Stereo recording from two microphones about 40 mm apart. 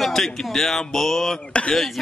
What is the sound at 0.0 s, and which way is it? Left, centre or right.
A man's voice, centre.